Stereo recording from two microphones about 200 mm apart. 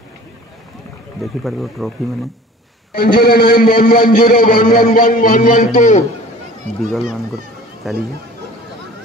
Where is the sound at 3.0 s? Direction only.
45° left (ahead or behind).